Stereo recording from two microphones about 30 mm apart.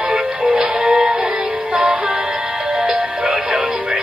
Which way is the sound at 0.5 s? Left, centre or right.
Right.